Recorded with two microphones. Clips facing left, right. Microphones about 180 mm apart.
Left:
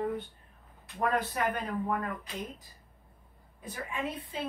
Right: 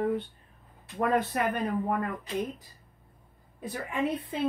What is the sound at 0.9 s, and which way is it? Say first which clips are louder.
Speech: right 4 dB; 65° right (ahead or behind).